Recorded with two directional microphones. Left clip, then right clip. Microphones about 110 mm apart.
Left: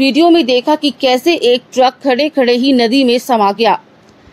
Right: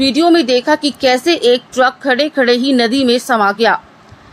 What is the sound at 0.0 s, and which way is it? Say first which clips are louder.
A woman's voice: left 2 dB; 25° left (ahead or behind).